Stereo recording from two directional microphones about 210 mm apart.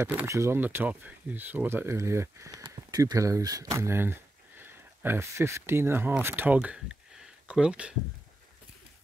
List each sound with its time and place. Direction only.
0.0 s speech: 15° right (ahead or behind)